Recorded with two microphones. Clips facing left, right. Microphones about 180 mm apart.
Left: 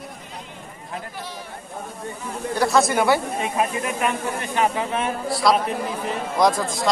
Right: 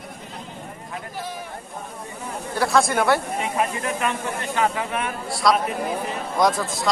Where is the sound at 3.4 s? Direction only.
15° left (ahead or behind).